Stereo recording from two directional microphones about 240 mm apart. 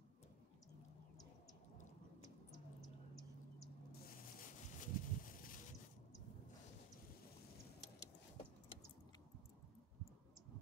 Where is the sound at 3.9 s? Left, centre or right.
Left.